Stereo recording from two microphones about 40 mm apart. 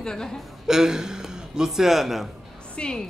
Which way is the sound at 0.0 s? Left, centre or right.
Centre.